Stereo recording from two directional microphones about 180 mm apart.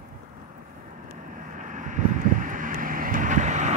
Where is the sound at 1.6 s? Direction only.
45° right (ahead or behind).